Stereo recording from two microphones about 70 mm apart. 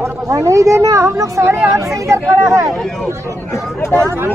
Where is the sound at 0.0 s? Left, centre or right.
Right.